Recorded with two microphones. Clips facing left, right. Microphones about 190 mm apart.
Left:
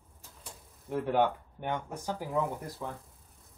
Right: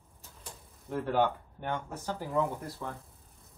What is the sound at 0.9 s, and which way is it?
Speech, 10° left (ahead or behind).